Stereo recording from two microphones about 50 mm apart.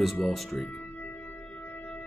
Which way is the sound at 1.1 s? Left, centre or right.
Left.